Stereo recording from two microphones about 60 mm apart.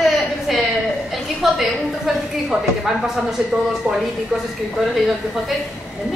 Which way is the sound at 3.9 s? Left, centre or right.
Centre.